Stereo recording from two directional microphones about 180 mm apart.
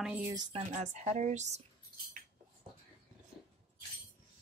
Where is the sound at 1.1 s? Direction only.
45° right (ahead or behind).